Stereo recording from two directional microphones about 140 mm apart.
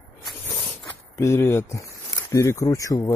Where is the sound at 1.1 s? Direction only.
20° left (ahead or behind).